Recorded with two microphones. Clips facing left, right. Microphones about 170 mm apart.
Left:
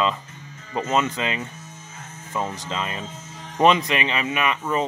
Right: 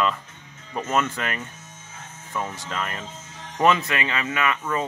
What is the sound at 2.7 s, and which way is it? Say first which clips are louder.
Speech: left 2 dB; 15° left (ahead or behind).